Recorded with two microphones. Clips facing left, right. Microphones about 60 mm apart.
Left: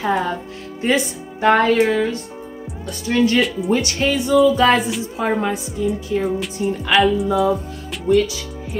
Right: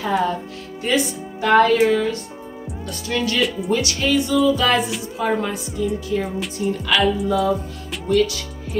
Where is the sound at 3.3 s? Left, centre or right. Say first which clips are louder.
Left 3 dB; centre.